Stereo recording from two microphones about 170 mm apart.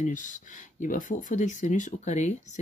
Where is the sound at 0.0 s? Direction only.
50° left (ahead or behind).